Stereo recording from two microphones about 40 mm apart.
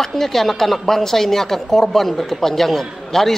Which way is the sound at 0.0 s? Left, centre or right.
Centre.